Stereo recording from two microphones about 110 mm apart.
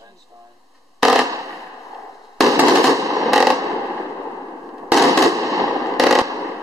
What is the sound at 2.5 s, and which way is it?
Fireworks, 30° right (ahead or behind).